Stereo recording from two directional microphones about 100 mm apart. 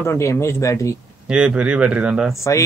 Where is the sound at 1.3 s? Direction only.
10° right (ahead or behind).